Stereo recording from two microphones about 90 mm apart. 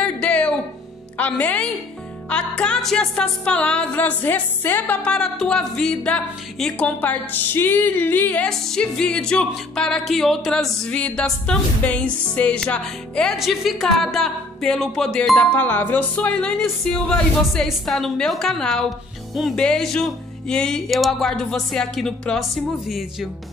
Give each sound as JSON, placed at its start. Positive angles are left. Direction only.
{"t": 0.0, "sound": "music", "side_deg": 15}
{"t": 8.5, "sound": "music", "side_deg": 5}
{"t": 13.4, "sound": "speech", "side_deg": 0}